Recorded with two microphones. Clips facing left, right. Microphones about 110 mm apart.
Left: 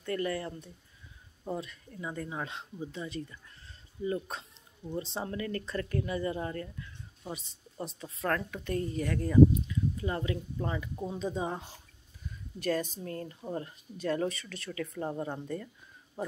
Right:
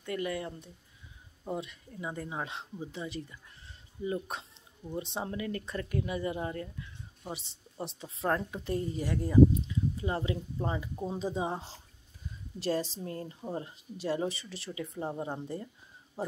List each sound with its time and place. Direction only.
0.0 s speech: 10° right (ahead or behind)
7.8 s speech: 25° right (ahead or behind)